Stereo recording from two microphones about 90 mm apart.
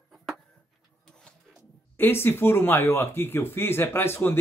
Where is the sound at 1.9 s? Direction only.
25° left (ahead or behind).